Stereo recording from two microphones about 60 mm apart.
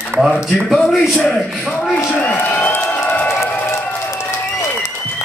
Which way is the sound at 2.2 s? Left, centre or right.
Left.